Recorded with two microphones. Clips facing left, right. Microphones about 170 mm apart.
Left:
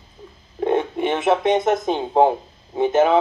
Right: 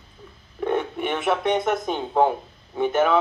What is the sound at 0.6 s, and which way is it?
Speech, 30° left (ahead or behind).